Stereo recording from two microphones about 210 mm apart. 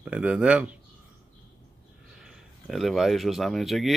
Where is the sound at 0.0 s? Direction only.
5° right (ahead or behind).